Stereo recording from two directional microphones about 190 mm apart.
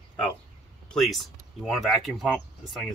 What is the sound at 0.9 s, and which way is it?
Speech, centre (ahead or behind).